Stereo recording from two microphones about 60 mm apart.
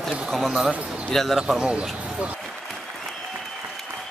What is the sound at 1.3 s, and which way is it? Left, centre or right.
Speech, centre.